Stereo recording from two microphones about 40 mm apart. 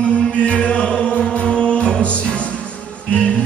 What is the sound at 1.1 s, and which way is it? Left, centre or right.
Music, left.